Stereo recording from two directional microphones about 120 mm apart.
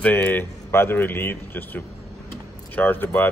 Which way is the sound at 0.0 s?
15° left (ahead or behind).